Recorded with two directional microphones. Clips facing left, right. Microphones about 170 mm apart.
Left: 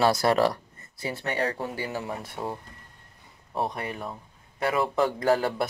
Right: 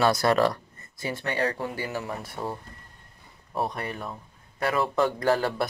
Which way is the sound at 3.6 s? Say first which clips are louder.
Even; 15° left (ahead or behind).